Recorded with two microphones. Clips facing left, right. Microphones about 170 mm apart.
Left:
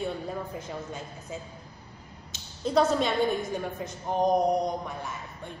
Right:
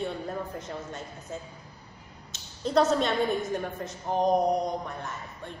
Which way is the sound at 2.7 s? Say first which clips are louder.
Even; centre (ahead or behind).